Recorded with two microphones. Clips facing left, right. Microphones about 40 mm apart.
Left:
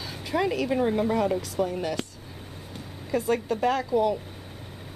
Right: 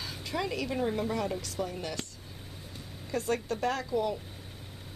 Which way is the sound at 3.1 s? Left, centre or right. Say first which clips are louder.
Left 6 dB; centre.